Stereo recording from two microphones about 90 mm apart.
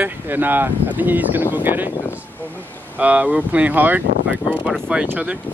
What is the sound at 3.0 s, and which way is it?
Speech, 15° right (ahead or behind).